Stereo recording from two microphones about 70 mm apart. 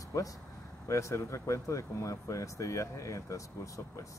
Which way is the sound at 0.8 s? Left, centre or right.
Left.